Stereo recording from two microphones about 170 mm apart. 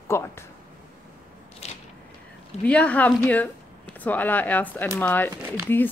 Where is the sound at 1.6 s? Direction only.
40° left (ahead or behind).